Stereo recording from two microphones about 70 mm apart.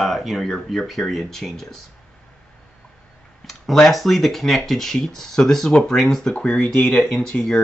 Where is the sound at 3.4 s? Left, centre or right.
Centre.